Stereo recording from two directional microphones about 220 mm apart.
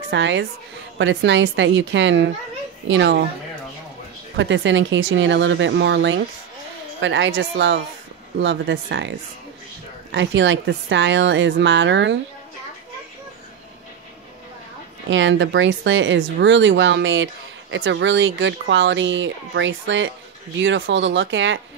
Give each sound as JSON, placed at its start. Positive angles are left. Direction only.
{"t": 0.1, "sound": "speech", "side_deg": -55}
{"t": 4.4, "sound": "speech", "side_deg": -55}
{"t": 10.1, "sound": "speech", "side_deg": -55}
{"t": 15.0, "sound": "speech", "side_deg": -55}